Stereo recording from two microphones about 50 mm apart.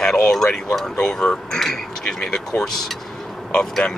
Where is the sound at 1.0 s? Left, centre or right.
Centre.